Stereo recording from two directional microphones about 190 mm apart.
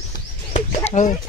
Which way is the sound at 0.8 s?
40° left (ahead or behind).